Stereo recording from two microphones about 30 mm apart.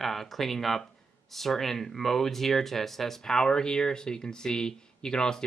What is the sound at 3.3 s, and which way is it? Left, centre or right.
Speech, left.